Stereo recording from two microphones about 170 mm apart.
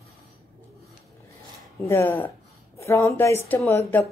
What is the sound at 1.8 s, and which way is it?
A woman's voice, 15° left (ahead or behind).